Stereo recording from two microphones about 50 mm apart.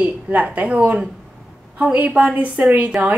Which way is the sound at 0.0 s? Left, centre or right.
Right.